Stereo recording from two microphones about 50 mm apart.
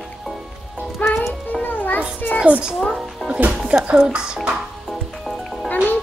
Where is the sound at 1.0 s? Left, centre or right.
Left.